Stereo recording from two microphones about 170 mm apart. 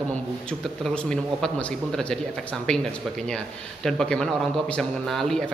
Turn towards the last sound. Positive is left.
turn(degrees=0)  # may be behind; listen again after turning